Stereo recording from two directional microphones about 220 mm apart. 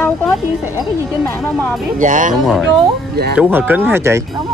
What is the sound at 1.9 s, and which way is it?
Speech, 35° right (ahead or behind).